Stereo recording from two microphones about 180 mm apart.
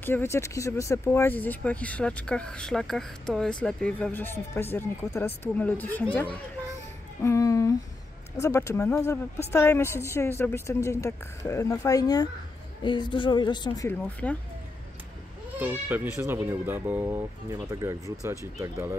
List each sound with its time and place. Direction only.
0.0 s speech: 10° left (ahead or behind)
7.2 s a woman's voice: 15° left (ahead or behind)
13.8 s speech: 10° left (ahead or behind)
15.6 s speech: 10° right (ahead or behind)